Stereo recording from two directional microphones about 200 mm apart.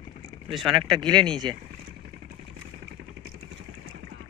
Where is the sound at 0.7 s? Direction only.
25° right (ahead or behind).